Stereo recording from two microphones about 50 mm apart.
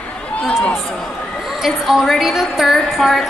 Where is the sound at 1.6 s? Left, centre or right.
Centre.